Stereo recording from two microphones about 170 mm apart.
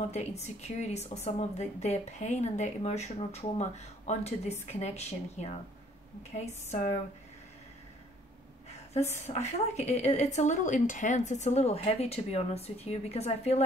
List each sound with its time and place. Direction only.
0.1 s speech: 40° left (ahead or behind)
8.6 s a sound: 40° left (ahead or behind)
9.3 s speech: 40° left (ahead or behind)